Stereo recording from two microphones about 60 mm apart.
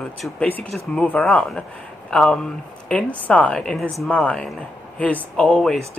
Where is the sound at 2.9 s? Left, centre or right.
Left.